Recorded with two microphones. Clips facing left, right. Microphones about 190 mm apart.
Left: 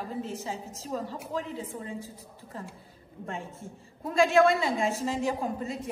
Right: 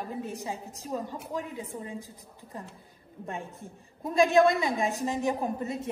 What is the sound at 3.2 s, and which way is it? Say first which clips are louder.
A woman's voice: even; 15° right (ahead or behind).